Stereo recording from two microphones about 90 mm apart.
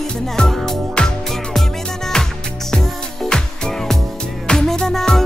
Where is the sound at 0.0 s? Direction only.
5° left (ahead or behind).